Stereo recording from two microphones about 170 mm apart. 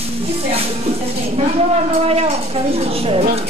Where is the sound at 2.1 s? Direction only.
35° right (ahead or behind).